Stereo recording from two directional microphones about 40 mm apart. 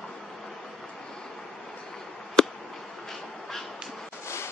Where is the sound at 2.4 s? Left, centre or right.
Centre.